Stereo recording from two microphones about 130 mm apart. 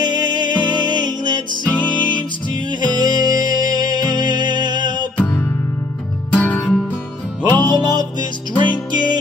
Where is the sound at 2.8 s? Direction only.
35° right (ahead or behind).